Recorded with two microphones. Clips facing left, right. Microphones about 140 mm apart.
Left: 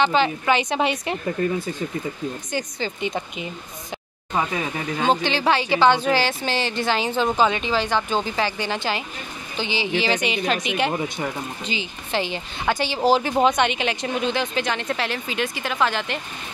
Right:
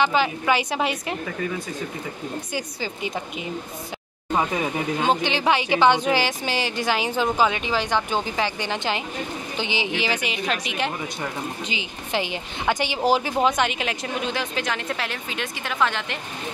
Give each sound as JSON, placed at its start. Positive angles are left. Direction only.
{"t": 0.0, "sound": "a woman's voice", "side_deg": -10}
{"t": 2.5, "sound": "a woman's voice", "side_deg": -5}
{"t": 5.0, "sound": "a woman's voice", "side_deg": -15}
{"t": 11.6, "sound": "a woman's voice", "side_deg": -15}